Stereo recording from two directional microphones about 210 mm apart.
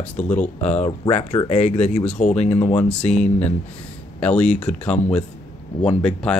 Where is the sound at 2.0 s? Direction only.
5° left (ahead or behind).